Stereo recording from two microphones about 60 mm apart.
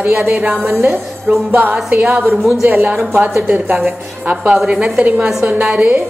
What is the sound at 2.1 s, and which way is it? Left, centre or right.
Speech, centre.